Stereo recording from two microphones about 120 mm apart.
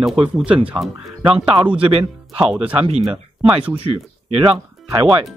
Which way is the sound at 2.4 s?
5° right (ahead or behind).